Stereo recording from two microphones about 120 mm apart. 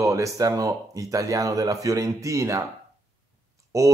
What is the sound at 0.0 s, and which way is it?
Speech, 25° right (ahead or behind).